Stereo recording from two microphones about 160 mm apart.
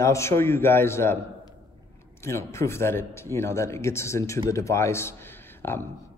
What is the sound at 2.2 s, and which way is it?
Speech, 15° left (ahead or behind).